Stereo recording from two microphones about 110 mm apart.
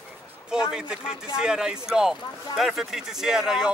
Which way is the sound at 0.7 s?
5° right (ahead or behind).